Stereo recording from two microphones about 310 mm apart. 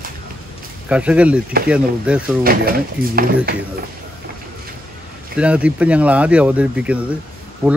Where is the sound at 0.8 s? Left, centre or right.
Centre.